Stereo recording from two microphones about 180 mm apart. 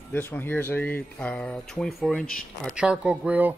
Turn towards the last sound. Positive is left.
turn(degrees=-10)  # may be behind; listen again after turning